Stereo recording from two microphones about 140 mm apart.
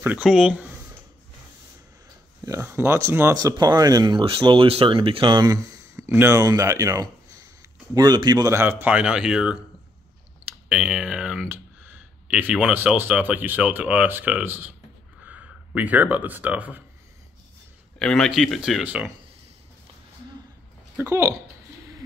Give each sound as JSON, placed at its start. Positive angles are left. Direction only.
{"t": 0.0, "sound": "speech", "side_deg": -10}
{"t": 2.6, "sound": "speech", "side_deg": -15}
{"t": 3.3, "sound": "speech", "side_deg": -30}
{"t": 8.5, "sound": "speech", "side_deg": -15}
{"t": 10.7, "sound": "speech", "side_deg": -5}
{"t": 17.9, "sound": "speech", "side_deg": 5}
{"t": 21.0, "sound": "speech", "side_deg": -20}